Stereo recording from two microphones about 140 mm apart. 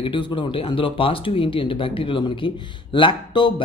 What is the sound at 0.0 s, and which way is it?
Speech, 35° left (ahead or behind).